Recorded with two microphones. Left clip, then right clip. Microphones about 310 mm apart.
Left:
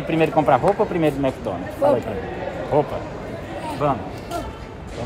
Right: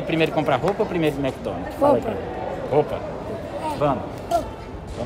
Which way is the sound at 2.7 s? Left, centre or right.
Centre.